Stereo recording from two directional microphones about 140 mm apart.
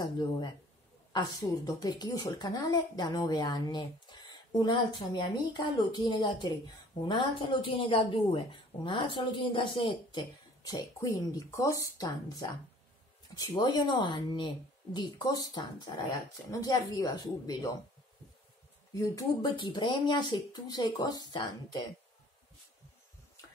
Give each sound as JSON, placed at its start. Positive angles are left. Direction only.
{"t": 0.0, "sound": "a woman's voice", "side_deg": 30}
{"t": 18.9, "sound": "a woman's voice", "side_deg": 30}